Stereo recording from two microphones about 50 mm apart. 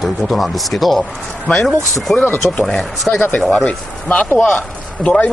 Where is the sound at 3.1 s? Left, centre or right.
Centre.